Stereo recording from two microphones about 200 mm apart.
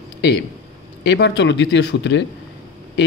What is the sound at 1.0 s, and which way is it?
Speech, 60° left (ahead or behind).